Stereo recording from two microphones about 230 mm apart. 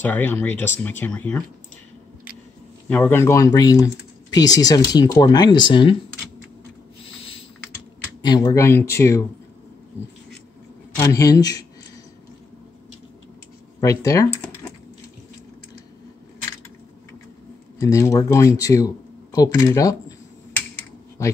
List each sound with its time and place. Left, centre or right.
0.0 s speech: centre
2.9 s speech: centre
7.2 s typing: left
8.2 s speech: centre
11.0 s speech: centre
13.7 s speech: centre
17.7 s a man's voice: centre